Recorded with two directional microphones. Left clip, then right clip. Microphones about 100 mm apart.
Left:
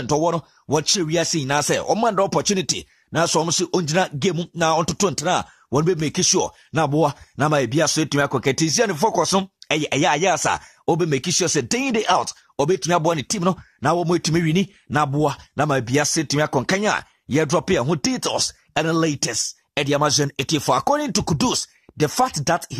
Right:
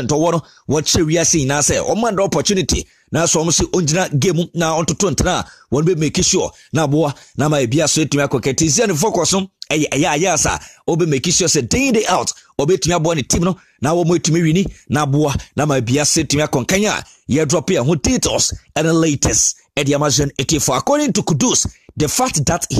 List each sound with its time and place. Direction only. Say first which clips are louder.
0.7 s speech: right 4 dB; 30° right (ahead or behind)
4.7 s speech: right 3 dB; 25° right (ahead or behind)
5.1 s speech: right 3 dB; 40° right (ahead or behind)
15.8 s speech: right 4 dB; 30° right (ahead or behind)